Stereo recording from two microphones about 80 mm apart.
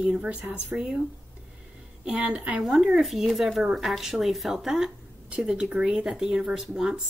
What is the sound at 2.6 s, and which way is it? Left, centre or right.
Speech, centre.